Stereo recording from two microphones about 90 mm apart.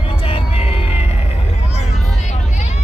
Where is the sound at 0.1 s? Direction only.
90° left.